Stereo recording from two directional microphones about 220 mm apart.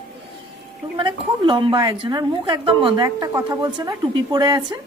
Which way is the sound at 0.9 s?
20° right (ahead or behind).